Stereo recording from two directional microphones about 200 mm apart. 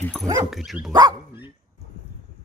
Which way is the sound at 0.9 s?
20° right (ahead or behind).